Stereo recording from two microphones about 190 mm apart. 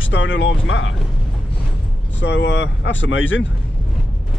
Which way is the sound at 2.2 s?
65° left (ahead or behind).